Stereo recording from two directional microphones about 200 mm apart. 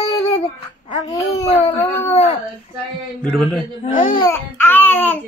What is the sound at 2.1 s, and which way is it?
Speech, 35° left (ahead or behind).